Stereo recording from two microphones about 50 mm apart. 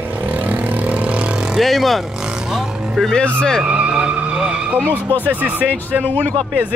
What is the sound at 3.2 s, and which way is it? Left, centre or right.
Speech, left.